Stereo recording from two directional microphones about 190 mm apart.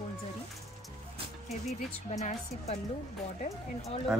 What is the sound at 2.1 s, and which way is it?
A woman's voice, 35° left (ahead or behind).